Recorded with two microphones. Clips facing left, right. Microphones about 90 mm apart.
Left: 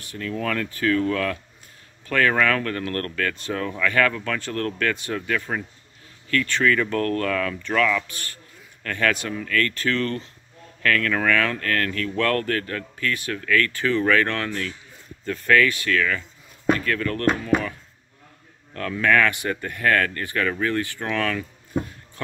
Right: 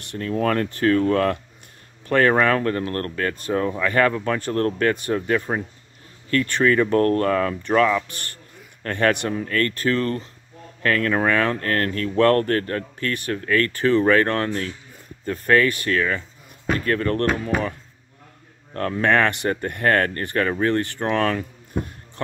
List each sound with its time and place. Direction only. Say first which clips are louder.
0.2 s a man's voice: right 5 dB; 40° right (ahead or behind)
18.7 s speech: right 1 dB; 35° right (ahead or behind)